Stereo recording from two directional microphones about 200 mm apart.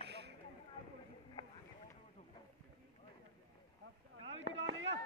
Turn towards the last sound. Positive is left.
turn(degrees=-70)  # may be behind; listen again after turning